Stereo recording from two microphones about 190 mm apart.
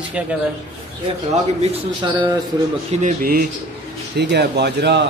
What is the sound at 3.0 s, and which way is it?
Speech, 50° right (ahead or behind).